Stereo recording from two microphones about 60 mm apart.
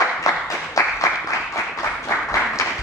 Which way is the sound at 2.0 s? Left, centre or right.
Left.